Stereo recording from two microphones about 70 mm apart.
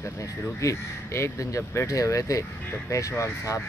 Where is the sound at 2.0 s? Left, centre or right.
Left.